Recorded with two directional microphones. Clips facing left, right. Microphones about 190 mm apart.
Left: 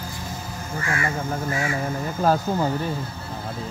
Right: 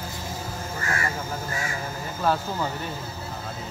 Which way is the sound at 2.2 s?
40° left (ahead or behind).